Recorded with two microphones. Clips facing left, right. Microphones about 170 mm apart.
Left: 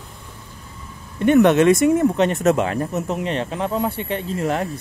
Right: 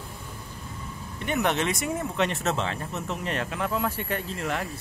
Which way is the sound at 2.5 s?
45° left (ahead or behind).